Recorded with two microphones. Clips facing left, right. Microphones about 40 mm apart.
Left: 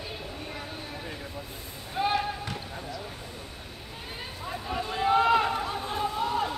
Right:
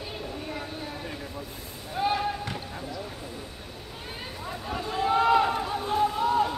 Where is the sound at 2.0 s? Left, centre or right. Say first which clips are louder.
Even; centre.